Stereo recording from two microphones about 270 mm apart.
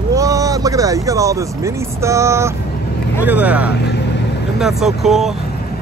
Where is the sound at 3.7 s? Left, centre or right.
Left.